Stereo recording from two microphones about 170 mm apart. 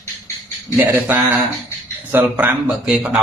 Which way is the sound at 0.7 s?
10° right (ahead or behind).